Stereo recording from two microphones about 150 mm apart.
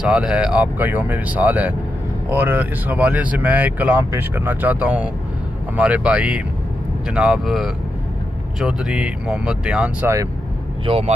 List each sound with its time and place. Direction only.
0.1 s speech: 5° right (ahead or behind)
10.9 s speech: 40° right (ahead or behind)